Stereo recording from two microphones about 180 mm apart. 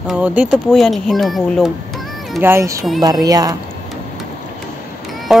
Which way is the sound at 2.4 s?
15° right (ahead or behind).